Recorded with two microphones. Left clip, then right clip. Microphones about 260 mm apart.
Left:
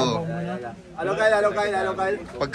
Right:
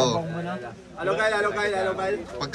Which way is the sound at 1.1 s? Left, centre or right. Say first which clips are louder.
Left 3 dB; centre.